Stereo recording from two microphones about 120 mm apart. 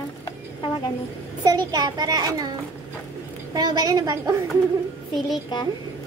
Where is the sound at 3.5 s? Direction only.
35° right (ahead or behind).